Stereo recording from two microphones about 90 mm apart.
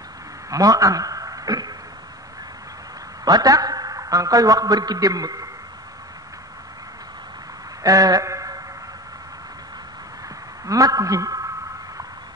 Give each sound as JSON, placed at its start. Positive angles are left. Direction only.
{"t": 0.5, "sound": "speech", "side_deg": -40}
{"t": 3.3, "sound": "a man's voice", "side_deg": -45}
{"t": 7.8, "sound": "a sound", "side_deg": -45}
{"t": 10.6, "sound": "a man's voice", "side_deg": -40}